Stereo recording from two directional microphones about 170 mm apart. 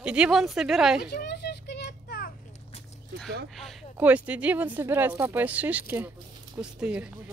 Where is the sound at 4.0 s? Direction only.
10° right (ahead or behind).